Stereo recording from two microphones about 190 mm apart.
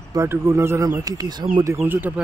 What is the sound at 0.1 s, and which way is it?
Speech, 15° right (ahead or behind).